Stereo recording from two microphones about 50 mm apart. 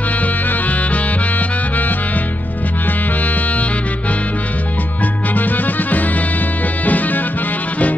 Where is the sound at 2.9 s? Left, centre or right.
Left.